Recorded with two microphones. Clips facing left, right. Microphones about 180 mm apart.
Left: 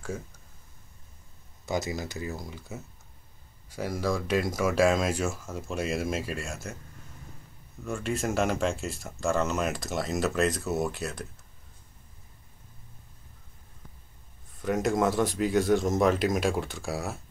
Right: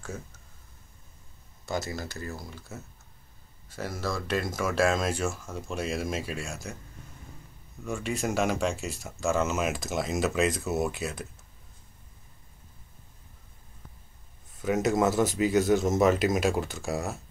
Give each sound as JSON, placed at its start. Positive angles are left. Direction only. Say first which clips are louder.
{"t": 1.7, "sound": "speech", "louder": "left 2 dB", "side_deg": 15}
{"t": 7.8, "sound": "speech", "louder": "even", "side_deg": 0}
{"t": 14.6, "sound": "speech", "louder": "right 1 dB", "side_deg": 0}